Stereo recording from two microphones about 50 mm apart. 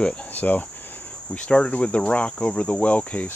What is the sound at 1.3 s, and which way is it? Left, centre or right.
Cricket, left.